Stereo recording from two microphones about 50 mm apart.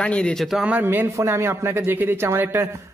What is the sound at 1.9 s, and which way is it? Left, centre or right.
Speech, right.